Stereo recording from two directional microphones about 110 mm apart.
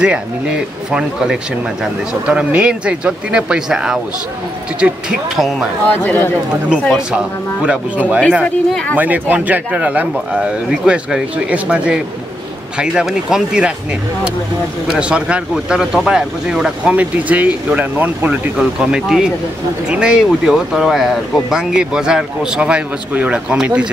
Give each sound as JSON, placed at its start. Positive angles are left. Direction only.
{"t": 0.0, "sound": "speech", "side_deg": -10}
{"t": 5.9, "sound": "a man's voice", "side_deg": 15}
{"t": 7.6, "sound": "speech", "side_deg": -10}
{"t": 8.5, "sound": "a man's voice", "side_deg": 10}
{"t": 8.9, "sound": "speech", "side_deg": -15}
{"t": 15.0, "sound": "speech", "side_deg": -10}